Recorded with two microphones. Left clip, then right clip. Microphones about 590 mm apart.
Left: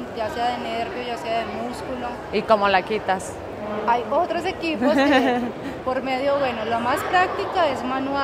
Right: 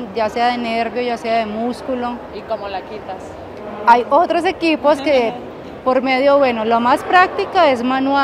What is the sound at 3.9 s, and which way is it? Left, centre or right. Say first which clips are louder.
A woman's voice: right 10 dB; right.